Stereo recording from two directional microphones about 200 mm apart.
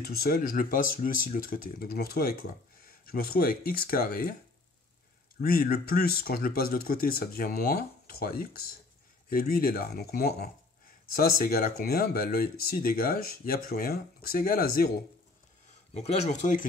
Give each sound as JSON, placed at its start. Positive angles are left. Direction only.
{"t": 0.1, "sound": "speech", "side_deg": 50}
{"t": 5.4, "sound": "speech", "side_deg": 50}
{"t": 15.9, "sound": "speech", "side_deg": 30}